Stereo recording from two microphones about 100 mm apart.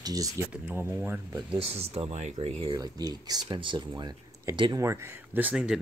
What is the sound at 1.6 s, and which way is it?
Speech, 90° right.